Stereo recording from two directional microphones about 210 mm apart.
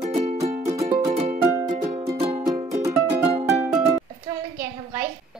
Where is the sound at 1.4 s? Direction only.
15° right (ahead or behind).